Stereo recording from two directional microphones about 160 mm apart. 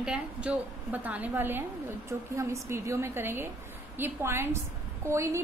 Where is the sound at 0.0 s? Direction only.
5° right (ahead or behind).